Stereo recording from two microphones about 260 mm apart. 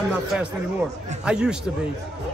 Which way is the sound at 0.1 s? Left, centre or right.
Centre.